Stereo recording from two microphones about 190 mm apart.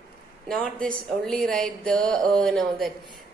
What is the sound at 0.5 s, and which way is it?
A woman's voice, 5° left (ahead or behind).